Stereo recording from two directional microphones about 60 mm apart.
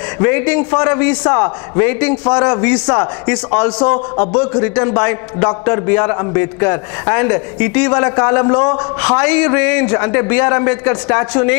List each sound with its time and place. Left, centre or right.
0.2 s a man's voice: left